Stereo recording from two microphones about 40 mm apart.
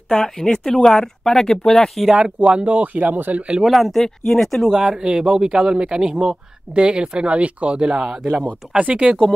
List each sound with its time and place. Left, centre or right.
0.1 s speech: centre
2.0 s a man's voice: centre
2.4 s speech: right
3.6 s speech: centre
4.6 s a man's voice: centre
8.5 s a man's voice: right